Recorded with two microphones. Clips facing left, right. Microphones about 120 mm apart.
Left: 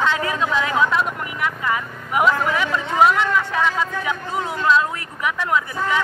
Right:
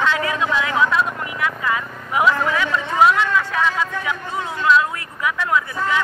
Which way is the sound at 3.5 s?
25° left (ahead or behind).